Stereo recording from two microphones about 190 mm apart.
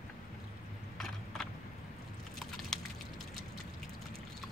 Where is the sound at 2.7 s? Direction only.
Centre (ahead or behind).